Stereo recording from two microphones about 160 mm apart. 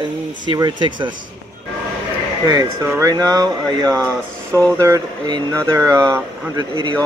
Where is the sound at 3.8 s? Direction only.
5° left (ahead or behind).